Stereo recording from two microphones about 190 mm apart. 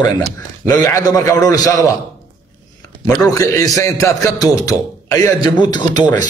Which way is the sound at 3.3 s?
15° left (ahead or behind).